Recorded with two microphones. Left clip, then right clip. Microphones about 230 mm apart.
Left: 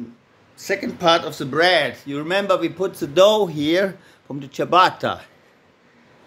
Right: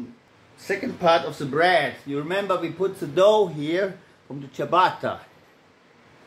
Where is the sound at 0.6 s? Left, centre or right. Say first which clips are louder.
Left 3 dB; left.